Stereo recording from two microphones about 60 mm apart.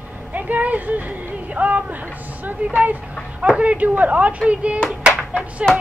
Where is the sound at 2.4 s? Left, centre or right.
Right.